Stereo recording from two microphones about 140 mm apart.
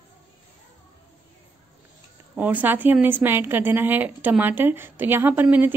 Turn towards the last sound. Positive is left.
turn(degrees=-15)  # may be behind; listen again after turning